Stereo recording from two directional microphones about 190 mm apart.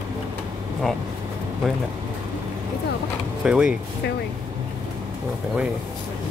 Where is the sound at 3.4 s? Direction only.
5° right (ahead or behind).